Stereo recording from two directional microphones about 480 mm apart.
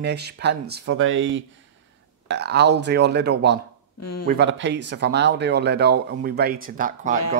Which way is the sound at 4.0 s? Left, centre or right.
Left.